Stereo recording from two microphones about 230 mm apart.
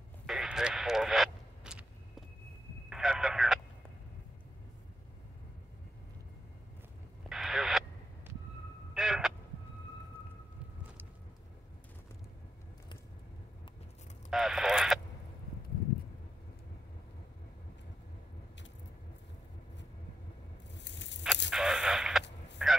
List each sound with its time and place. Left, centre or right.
0.3 s radio: centre
2.9 s a sound: centre
7.2 s radio: centre
8.9 s vehicle: centre
14.3 s radio: centre
20.8 s tearing: left
21.5 s a sound: centre